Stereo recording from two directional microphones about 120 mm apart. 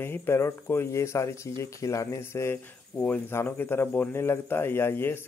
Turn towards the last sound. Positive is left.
turn(degrees=20)  # may be behind; listen again after turning